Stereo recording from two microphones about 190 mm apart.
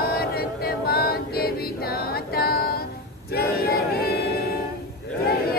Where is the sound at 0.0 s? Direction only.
55° left (ahead or behind).